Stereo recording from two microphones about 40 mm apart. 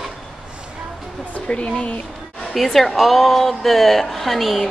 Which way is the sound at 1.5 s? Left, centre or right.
Left.